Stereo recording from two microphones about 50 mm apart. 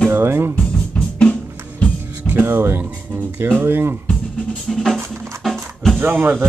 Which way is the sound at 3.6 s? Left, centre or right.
Right.